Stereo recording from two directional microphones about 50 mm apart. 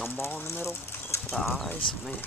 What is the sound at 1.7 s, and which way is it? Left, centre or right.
Speech, left.